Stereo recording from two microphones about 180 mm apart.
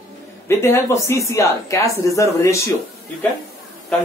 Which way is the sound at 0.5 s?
15° left (ahead or behind).